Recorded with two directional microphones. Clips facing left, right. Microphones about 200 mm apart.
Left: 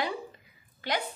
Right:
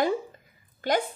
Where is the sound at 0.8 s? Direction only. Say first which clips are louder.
Right 7 dB; 45° right (ahead or behind).